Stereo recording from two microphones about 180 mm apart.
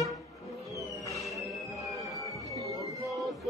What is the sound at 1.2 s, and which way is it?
Music, centre (ahead or behind).